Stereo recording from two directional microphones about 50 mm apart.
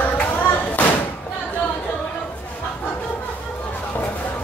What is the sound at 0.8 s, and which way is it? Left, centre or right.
Thump, left.